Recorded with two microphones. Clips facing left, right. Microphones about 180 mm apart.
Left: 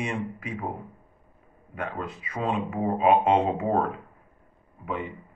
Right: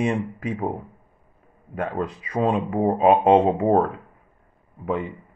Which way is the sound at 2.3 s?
35° right (ahead or behind).